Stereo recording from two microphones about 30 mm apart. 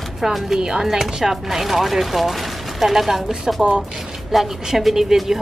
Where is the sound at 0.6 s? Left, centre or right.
Right.